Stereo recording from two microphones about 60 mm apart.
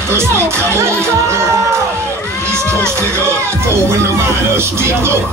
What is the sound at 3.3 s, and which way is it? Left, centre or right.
Music, right.